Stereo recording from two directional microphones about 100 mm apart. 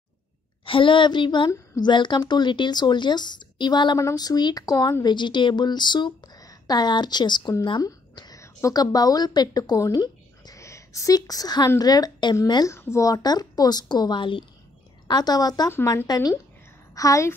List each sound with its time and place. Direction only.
0.7 s a woman's voice: 60° left (ahead or behind); by 4.9 s 40° left (ahead or behind)
5.0 s a woman's voice: 50° left (ahead or behind)
7.8 s a sound: 40° left (ahead or behind)
8.4 s speech: 30° left (ahead or behind)
12.6 s a woman's voice: 30° left (ahead or behind)